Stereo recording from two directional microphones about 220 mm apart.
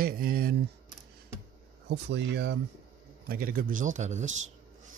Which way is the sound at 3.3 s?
40° right (ahead or behind).